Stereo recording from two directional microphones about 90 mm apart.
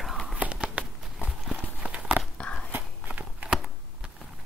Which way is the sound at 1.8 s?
10° right (ahead or behind).